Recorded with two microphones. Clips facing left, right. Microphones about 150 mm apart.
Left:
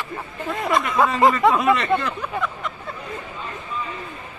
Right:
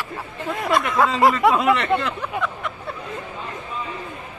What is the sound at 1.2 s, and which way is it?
Speech, 10° right (ahead or behind).